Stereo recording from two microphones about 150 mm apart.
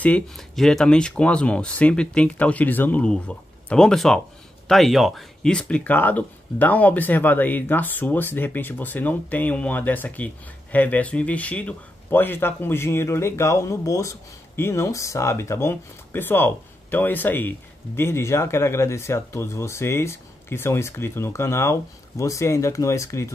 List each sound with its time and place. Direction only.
0.0 s speech: 5° left (ahead or behind); by 23.3 s 20° left (ahead or behind)